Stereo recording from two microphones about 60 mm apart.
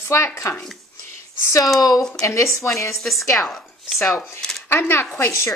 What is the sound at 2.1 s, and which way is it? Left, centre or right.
Speech, left.